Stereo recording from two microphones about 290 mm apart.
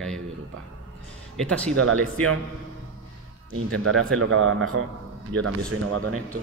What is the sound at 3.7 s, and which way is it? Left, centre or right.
Speech, right.